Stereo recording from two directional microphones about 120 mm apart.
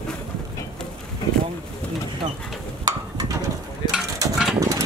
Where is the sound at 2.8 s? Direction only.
30° right (ahead or behind).